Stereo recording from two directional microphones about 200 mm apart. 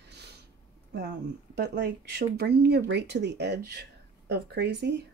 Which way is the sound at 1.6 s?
60° right (ahead or behind).